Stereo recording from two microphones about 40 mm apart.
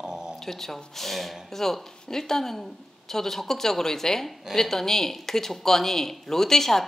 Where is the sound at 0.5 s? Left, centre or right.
Centre.